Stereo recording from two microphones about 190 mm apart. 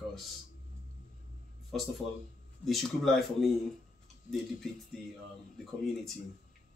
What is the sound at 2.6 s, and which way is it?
Speech, centre (ahead or behind).